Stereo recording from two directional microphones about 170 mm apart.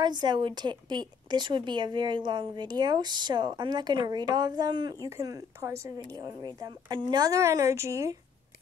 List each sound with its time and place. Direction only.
0.0 s speech: 25° right (ahead or behind)